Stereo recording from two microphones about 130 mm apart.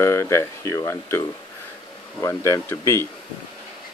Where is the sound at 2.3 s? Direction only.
20° left (ahead or behind).